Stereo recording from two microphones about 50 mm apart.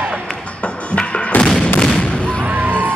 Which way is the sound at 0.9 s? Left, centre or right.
Left.